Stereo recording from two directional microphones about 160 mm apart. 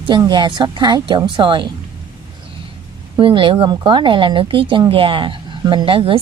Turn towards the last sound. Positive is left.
turn(degrees=-35)  # may be behind; listen again after turning